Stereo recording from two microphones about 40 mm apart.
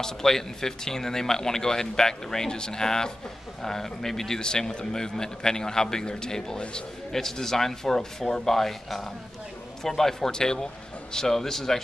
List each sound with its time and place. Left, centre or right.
0.0 s a man's voice: centre